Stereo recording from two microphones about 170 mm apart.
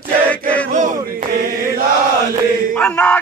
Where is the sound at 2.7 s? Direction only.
10° left (ahead or behind).